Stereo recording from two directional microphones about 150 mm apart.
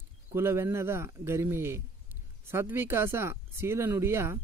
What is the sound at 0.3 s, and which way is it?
Speech, 15° right (ahead or behind).